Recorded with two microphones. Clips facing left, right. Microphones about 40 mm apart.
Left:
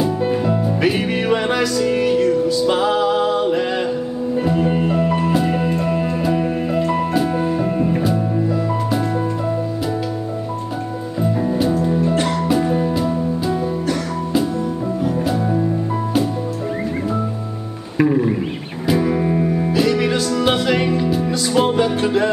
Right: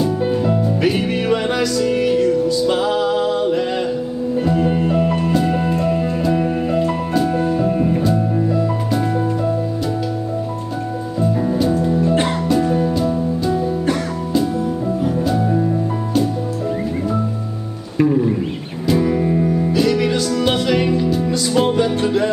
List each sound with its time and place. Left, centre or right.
0.5 s music: centre
11.1 s music: centre
15.2 s music: centre
17.9 s music: centre